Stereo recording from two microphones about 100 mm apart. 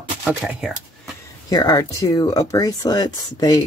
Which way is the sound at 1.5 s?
40° left (ahead or behind).